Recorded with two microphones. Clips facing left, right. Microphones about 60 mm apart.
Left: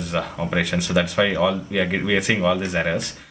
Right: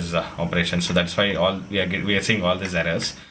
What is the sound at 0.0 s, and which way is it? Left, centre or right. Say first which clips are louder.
Speech: even; centre.